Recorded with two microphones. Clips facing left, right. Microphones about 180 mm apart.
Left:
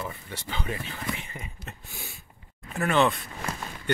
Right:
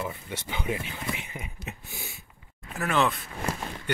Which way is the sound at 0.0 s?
15° right (ahead or behind).